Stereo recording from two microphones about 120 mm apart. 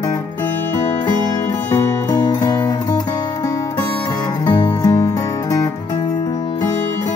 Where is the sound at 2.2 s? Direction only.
30° left (ahead or behind).